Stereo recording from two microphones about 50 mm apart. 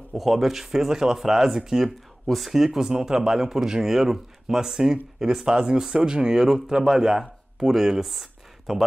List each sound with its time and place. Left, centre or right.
0.1 s speech: centre